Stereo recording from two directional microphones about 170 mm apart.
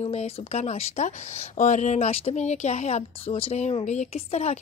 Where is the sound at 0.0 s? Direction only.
40° left (ahead or behind).